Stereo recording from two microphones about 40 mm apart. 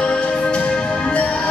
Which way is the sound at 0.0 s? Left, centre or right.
Left.